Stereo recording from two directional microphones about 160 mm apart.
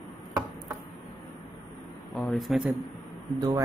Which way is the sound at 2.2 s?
Centre (ahead or behind).